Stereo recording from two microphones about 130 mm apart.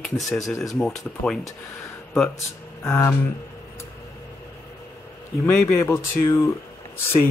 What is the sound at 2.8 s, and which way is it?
Speech, 15° left (ahead or behind).